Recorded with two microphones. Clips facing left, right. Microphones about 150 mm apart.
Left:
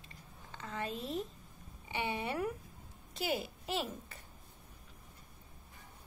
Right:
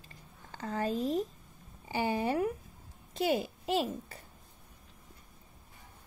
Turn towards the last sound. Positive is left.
turn(degrees=-30)  # may be behind; listen again after turning